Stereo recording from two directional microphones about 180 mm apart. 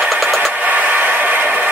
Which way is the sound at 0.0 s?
Centre (ahead or behind).